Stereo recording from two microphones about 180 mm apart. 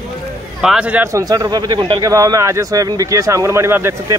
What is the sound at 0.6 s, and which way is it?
A man's voice, 5° right (ahead or behind).